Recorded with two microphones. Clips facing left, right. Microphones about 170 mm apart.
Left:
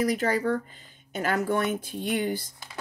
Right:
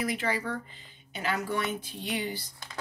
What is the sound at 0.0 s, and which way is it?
Speech, 45° left (ahead or behind).